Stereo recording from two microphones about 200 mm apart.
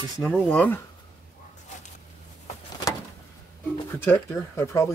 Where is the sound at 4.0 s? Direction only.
10° left (ahead or behind).